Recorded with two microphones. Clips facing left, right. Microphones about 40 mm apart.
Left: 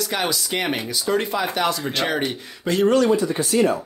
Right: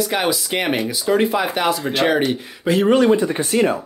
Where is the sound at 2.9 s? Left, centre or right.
Right.